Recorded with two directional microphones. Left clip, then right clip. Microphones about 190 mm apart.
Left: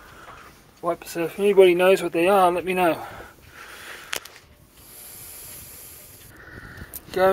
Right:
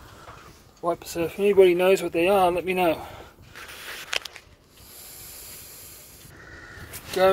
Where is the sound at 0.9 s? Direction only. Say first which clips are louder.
Left 1 dB; centre (ahead or behind).